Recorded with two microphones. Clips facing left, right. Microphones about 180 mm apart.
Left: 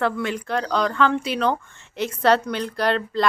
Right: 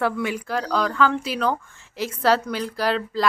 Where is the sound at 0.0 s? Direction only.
10° right (ahead or behind).